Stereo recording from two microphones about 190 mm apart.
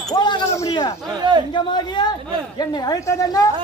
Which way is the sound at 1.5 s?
25° left (ahead or behind).